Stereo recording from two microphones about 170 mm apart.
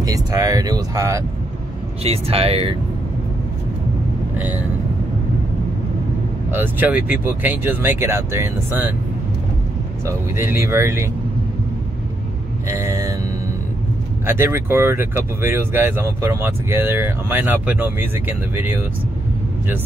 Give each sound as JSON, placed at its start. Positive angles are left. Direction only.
{"t": 0.0, "sound": "speech", "side_deg": -20}
{"t": 2.0, "sound": "speech", "side_deg": -35}
{"t": 6.5, "sound": "speech", "side_deg": -10}
{"t": 10.0, "sound": "speech", "side_deg": -15}
{"t": 12.6, "sound": "speech", "side_deg": -20}
{"t": 14.2, "sound": "speech", "side_deg": -15}